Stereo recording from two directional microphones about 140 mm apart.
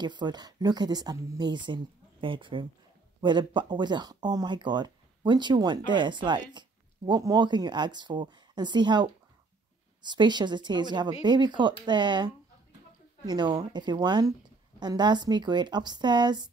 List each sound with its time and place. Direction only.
0.0 s speech: 30° right (ahead or behind)